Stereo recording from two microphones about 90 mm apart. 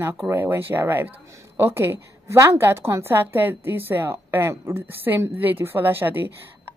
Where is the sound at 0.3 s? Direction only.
25° right (ahead or behind).